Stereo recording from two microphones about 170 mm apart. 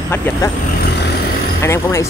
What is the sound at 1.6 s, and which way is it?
Speech, 15° left (ahead or behind).